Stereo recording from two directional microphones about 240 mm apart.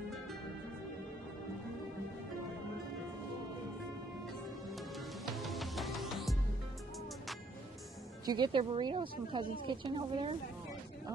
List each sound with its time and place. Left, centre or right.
4.6 s music: centre
8.3 s speech: centre